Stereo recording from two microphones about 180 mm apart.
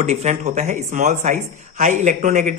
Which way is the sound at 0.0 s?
40° right (ahead or behind).